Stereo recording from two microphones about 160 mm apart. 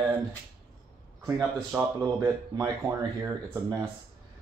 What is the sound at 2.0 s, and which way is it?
Speech, 20° right (ahead or behind).